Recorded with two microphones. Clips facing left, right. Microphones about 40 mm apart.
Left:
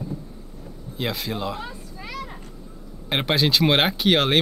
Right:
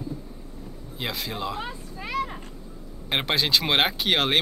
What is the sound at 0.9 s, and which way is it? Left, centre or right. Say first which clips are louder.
Speech: left 4 dB; centre.